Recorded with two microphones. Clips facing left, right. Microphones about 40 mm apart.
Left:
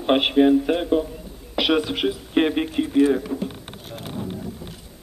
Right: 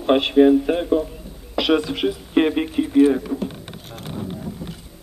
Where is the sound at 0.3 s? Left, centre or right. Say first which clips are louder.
Right 4 dB; centre.